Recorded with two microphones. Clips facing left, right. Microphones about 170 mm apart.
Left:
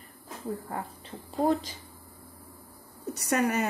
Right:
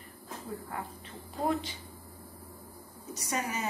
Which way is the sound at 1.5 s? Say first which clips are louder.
Left 4 dB; 40° left (ahead or behind).